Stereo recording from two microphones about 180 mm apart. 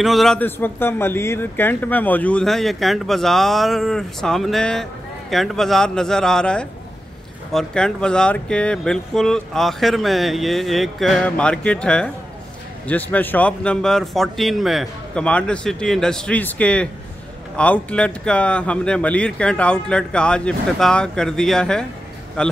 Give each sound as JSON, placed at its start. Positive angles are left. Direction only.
{"t": 0.0, "sound": "a man's voice", "side_deg": 0}